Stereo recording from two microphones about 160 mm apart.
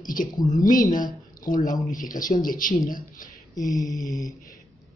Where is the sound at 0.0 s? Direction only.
55° left (ahead or behind).